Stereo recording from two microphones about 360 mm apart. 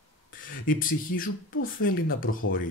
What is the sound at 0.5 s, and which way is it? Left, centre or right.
Speech, left.